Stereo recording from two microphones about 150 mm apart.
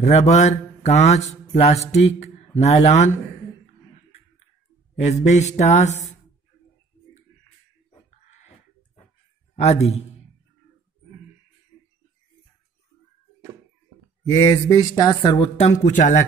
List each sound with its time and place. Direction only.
0.0 s speech: 50° left (ahead or behind)
1.5 s mantra: 45° left (ahead or behind)
1.9 s speech: 50° left (ahead or behind)
4.9 s speech: 50° left (ahead or behind)
9.6 s a man's voice: 50° left (ahead or behind)
14.2 s speech: 20° left (ahead or behind); by 15.7 s 35° left (ahead or behind)
15.8 s speech: 55° left (ahead or behind)